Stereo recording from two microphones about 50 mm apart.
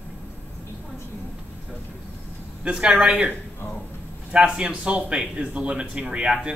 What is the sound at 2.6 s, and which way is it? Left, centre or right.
Speech, centre.